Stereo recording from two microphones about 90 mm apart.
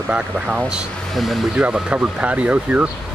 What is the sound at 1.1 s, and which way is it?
Speech, centre (ahead or behind).